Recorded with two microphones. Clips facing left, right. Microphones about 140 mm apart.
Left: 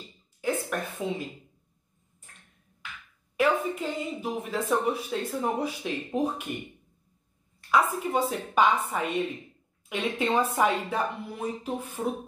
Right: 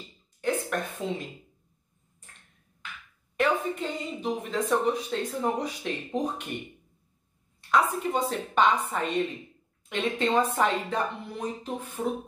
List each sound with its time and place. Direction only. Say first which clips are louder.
0.4 s a woman's voice: right 1 dB; 5° left (ahead or behind)
3.3 s speech: left 1 dB; 5° left (ahead or behind)
7.7 s speech: even; centre (ahead or behind)